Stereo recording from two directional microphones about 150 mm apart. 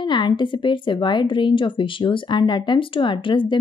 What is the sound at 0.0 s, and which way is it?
Speech, 30° left (ahead or behind).